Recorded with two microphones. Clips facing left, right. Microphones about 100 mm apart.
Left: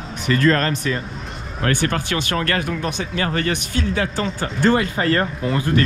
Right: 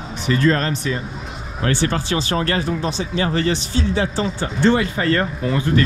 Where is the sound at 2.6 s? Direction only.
30° right (ahead or behind).